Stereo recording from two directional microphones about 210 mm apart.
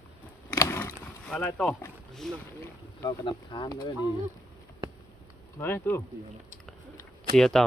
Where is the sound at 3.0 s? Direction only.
20° left (ahead or behind).